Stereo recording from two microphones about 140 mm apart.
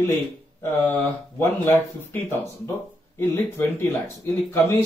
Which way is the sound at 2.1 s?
15° left (ahead or behind).